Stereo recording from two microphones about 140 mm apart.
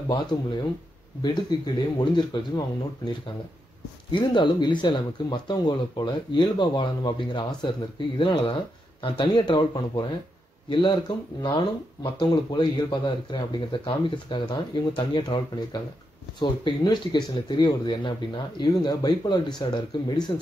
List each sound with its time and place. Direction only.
0.1 s speech: 35° left (ahead or behind)
4.1 s speech: 35° left (ahead or behind)